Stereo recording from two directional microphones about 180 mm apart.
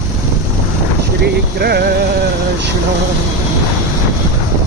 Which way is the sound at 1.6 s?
60° right (ahead or behind).